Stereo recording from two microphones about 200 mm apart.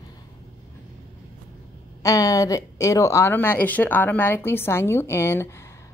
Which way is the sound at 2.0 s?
15° left (ahead or behind).